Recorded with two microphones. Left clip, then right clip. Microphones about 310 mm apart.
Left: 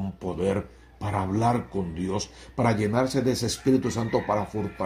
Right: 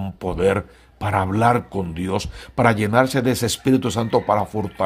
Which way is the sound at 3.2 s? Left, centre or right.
Right.